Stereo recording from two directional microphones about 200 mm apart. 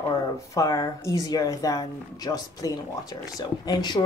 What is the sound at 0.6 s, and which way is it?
Speech, 15° left (ahead or behind).